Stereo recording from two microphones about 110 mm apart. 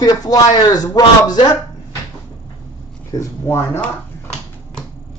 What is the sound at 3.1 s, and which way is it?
Speech, 25° left (ahead or behind).